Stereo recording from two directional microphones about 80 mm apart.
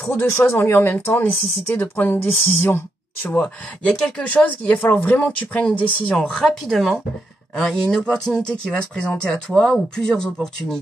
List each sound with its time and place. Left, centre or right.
0.1 s speech: left
3.3 s speech: centre